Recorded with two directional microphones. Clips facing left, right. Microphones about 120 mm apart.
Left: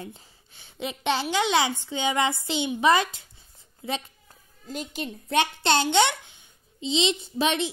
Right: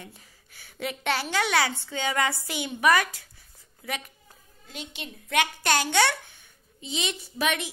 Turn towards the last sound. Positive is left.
turn(degrees=25)  # may be behind; listen again after turning